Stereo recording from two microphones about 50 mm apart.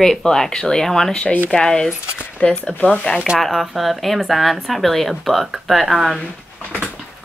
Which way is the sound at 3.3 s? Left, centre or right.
Centre.